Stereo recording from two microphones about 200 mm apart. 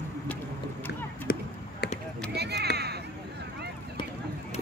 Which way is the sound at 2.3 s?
55° right (ahead or behind).